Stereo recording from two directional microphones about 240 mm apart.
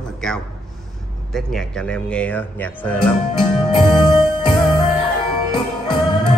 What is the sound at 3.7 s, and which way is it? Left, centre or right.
Music, left.